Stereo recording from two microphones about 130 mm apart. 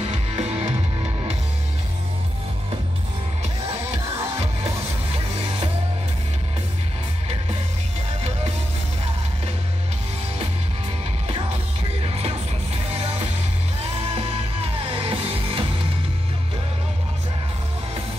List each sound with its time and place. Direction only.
0.0 s music: 45° right (ahead or behind)
12.0 s music: 50° right (ahead or behind)
14.1 s music: 45° right (ahead or behind)